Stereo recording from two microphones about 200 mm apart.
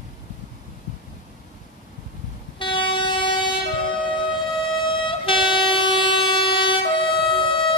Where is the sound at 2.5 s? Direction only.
25° left (ahead or behind).